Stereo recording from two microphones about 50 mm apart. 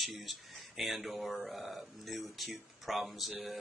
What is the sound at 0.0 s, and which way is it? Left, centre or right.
Speech, centre.